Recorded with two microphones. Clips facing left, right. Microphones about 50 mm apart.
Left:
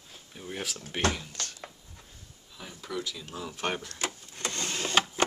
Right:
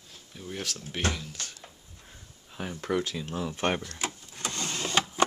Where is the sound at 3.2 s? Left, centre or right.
Right.